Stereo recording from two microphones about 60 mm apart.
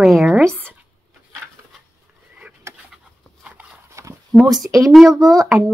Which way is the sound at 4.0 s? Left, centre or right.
Right.